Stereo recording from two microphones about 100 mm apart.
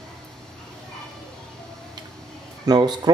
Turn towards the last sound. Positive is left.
turn(degrees=-45)  # may be behind; listen again after turning